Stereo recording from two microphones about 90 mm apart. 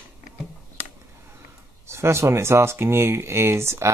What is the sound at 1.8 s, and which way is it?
Speech, 30° right (ahead or behind).